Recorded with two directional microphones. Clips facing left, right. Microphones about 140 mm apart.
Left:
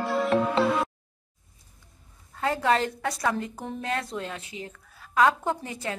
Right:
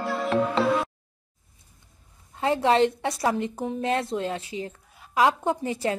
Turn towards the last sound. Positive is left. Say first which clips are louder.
# right 5 dB
turn(degrees=-25)  # may be behind; listen again after turning